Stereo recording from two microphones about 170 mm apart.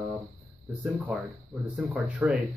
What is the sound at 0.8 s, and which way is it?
Speech, 10° right (ahead or behind).